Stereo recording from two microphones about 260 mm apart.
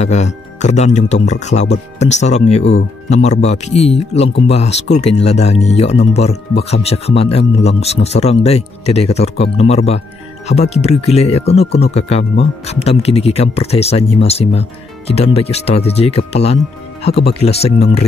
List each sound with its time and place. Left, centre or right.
0.0 s speech: left
17.0 s speech: left
17.4 s speech: left